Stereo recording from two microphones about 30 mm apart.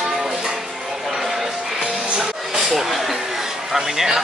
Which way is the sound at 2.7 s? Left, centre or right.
Centre.